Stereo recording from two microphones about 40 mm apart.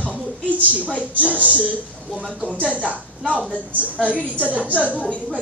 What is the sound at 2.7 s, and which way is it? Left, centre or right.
Speech, right.